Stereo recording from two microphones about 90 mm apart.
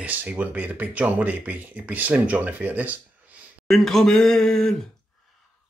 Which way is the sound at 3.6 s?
5° left (ahead or behind).